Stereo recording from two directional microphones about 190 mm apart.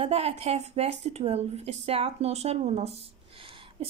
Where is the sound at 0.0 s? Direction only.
30° right (ahead or behind).